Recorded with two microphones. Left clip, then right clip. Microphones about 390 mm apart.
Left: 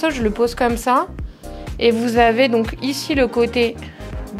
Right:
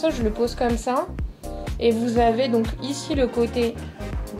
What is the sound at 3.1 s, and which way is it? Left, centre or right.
Speech, left.